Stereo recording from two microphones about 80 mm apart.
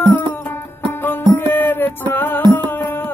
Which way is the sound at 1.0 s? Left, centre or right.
Left.